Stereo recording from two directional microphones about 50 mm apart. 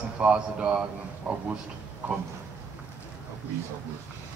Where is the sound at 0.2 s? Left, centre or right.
Right.